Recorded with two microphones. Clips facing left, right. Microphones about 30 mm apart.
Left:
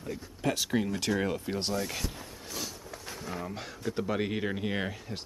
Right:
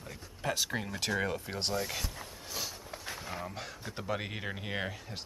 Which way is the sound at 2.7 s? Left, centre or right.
Right.